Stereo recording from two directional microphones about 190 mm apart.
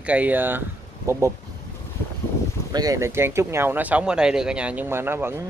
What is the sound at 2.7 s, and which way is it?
Speech, 20° right (ahead or behind).